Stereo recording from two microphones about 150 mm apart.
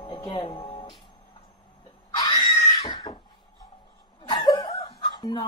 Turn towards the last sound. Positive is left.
turn(degrees=30)  # may be behind; listen again after turning